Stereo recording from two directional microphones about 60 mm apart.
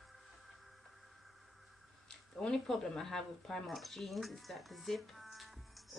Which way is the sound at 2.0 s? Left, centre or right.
Centre.